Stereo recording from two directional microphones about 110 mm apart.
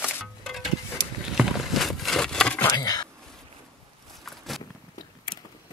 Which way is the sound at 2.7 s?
35° left (ahead or behind).